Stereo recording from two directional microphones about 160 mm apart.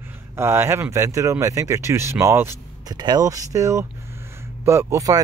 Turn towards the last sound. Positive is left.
turn(degrees=-20)  # may be behind; listen again after turning